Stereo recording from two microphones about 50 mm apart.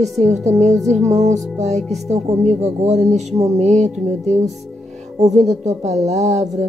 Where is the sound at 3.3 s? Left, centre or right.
Right.